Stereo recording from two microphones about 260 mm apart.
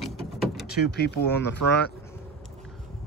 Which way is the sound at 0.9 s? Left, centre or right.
Left.